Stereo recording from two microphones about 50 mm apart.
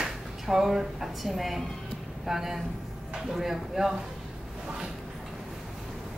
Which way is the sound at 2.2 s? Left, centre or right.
Centre.